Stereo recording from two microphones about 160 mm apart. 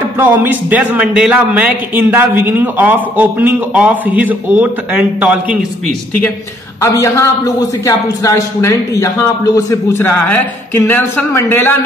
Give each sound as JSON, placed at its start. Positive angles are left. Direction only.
{"t": 0.2, "sound": "a man's voice", "side_deg": -10}
{"t": 6.8, "sound": "a man's voice", "side_deg": 20}